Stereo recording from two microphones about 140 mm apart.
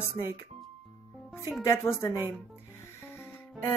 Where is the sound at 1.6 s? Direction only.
20° left (ahead or behind).